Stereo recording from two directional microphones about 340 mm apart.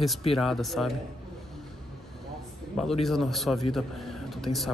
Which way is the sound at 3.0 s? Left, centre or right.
Centre.